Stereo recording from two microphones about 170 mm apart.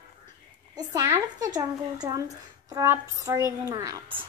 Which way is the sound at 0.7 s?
20° right (ahead or behind).